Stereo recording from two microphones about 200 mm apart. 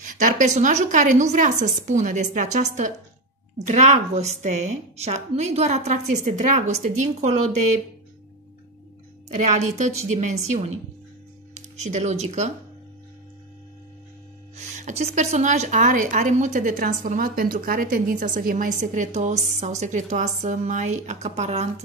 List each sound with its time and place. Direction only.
0.0 s a woman's voice: 40° right (ahead or behind)
9.5 s a woman's voice: 35° right (ahead or behind)
14.6 s a woman's voice: 35° right (ahead or behind)